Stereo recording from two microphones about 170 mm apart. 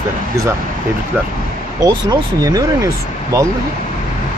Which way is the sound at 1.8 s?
20° right (ahead or behind).